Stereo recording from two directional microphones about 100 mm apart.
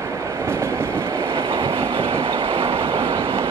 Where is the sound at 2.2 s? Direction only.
70° right (ahead or behind).